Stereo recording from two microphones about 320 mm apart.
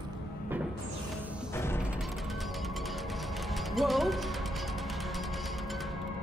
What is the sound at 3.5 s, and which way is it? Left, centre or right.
Music, centre.